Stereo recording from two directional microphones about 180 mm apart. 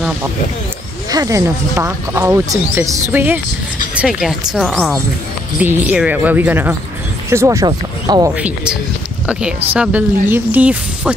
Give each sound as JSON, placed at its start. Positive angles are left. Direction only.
{"t": 1.1, "sound": "speech", "side_deg": -20}
{"t": 8.4, "sound": "speech", "side_deg": -5}
{"t": 9.8, "sound": "speech", "side_deg": -10}